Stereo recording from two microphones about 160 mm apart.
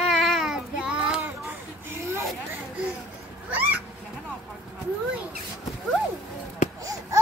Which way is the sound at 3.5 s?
10° right (ahead or behind).